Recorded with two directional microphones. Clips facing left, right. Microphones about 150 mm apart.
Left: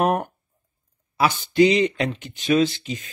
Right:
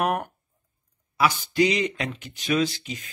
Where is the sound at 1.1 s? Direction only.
25° left (ahead or behind).